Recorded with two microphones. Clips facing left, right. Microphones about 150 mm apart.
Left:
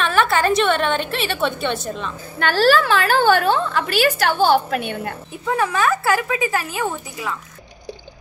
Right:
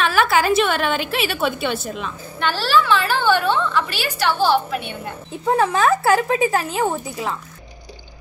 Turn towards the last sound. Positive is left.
turn(degrees=-30)  # may be behind; listen again after turning